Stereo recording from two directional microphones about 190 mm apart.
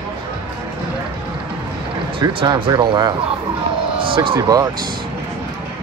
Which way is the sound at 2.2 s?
25° right (ahead or behind).